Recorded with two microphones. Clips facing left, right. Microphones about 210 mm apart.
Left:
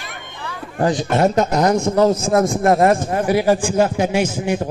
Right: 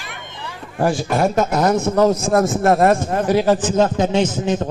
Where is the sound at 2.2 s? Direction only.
Centre (ahead or behind).